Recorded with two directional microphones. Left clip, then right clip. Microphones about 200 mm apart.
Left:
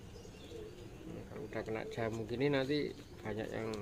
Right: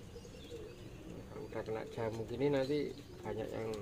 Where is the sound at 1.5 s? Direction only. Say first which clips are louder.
Left 1 dB; 25° left (ahead or behind).